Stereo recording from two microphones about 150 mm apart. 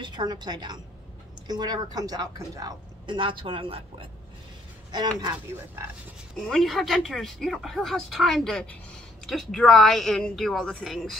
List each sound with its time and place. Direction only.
0.0 s a woman's voice: 30° right (ahead or behind)
4.9 s a woman's voice: 25° right (ahead or behind)
6.3 s speech: 5° left (ahead or behind)